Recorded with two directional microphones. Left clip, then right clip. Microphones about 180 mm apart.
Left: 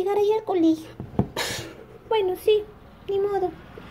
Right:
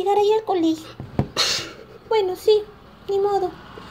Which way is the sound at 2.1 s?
5° left (ahead or behind).